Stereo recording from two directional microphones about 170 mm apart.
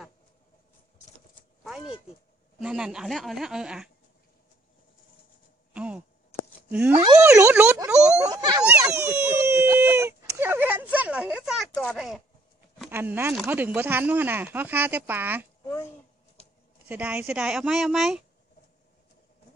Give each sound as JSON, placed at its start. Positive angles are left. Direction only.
{"t": 2.6, "sound": "speech", "side_deg": -5}
{"t": 5.7, "sound": "a sound", "side_deg": -5}
{"t": 6.7, "sound": "speech", "side_deg": -10}
{"t": 7.0, "sound": "speech", "side_deg": -20}
{"t": 8.7, "sound": "a sound", "side_deg": -20}
{"t": 11.7, "sound": "speech", "side_deg": 5}
{"t": 12.9, "sound": "speech", "side_deg": -15}
{"t": 16.9, "sound": "speech", "side_deg": -10}